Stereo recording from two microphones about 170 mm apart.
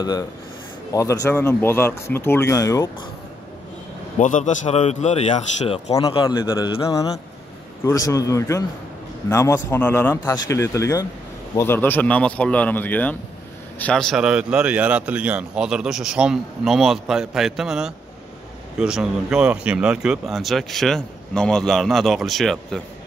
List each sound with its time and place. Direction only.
0.9 s speech: 20° left (ahead or behind)
4.2 s a man's voice: 45° left (ahead or behind)
5.9 s a man's voice: 20° left (ahead or behind); by 22.8 s centre (ahead or behind)